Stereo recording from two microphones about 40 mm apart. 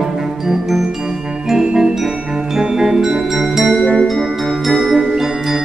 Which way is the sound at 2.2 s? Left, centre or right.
Right.